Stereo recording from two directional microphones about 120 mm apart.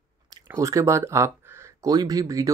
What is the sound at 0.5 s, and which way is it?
Speech, 25° right (ahead or behind).